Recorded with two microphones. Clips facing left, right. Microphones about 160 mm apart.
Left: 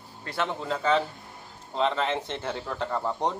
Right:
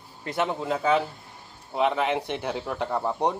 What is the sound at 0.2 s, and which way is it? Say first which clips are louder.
A man's voice: right 3 dB; 20° right (ahead or behind).